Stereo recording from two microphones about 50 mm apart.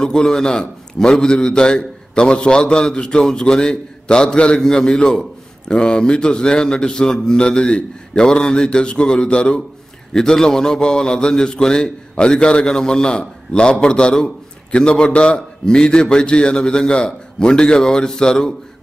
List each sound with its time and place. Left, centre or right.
0.0 s a man's voice: centre